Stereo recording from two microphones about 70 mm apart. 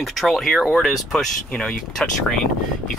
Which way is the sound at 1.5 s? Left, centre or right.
Centre.